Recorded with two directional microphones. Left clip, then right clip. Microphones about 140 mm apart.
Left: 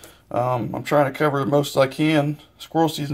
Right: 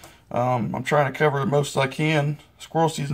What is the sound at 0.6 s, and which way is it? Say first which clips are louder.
Speech: left 2 dB; 30° left (ahead or behind).